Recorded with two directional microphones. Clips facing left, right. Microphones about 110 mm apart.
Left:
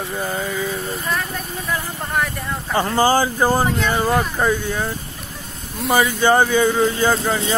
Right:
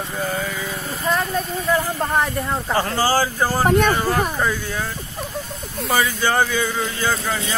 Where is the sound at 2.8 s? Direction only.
20° left (ahead or behind).